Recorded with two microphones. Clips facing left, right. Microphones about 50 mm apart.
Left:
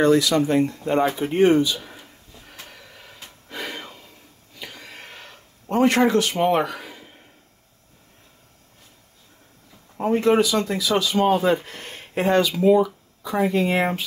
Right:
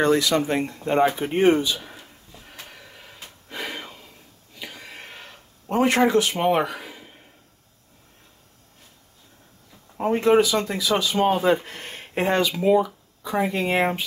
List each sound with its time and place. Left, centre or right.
0.0 s speech: right
1.8 s snort: centre
4.6 s a sound: centre
9.9 s speech: centre